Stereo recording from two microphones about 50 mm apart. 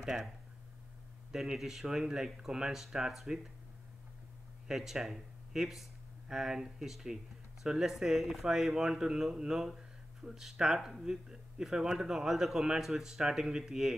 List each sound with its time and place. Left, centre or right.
0.0 s speech: centre
1.3 s speech: centre
4.6 s speech: centre